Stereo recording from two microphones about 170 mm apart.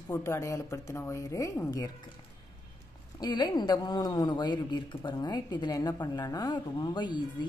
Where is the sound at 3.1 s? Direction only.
25° left (ahead or behind).